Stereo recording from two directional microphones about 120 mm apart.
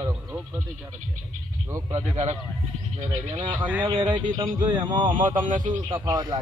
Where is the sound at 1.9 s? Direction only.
70° right (ahead or behind).